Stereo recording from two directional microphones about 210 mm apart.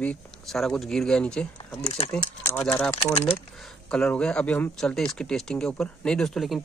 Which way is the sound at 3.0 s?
25° left (ahead or behind).